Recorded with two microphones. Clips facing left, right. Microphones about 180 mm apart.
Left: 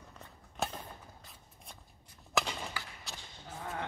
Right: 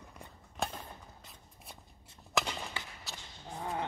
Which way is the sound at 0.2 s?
10° right (ahead or behind).